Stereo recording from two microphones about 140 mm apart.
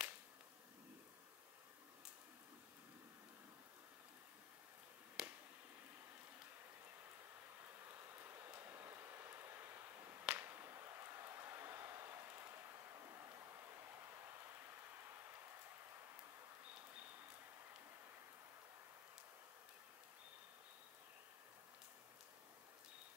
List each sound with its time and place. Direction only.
5.2 s finger snapping: 5° right (ahead or behind)
7.9 s vehicle: 15° right (ahead or behind)
10.2 s a sound: 15° right (ahead or behind)